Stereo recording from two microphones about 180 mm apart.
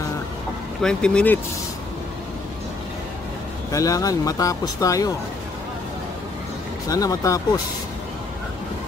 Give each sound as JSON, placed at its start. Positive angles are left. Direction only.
{"t": 0.8, "sound": "speech", "side_deg": 5}
{"t": 3.7, "sound": "speech", "side_deg": 20}
{"t": 6.9, "sound": "speech", "side_deg": 20}